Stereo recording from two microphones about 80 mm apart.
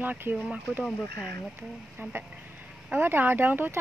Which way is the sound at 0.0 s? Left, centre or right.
Right.